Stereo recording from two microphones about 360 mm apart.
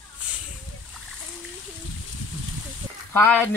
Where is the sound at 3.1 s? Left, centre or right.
Centre.